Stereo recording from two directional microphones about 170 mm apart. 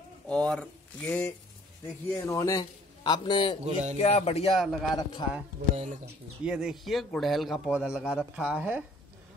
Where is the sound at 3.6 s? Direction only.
40° right (ahead or behind).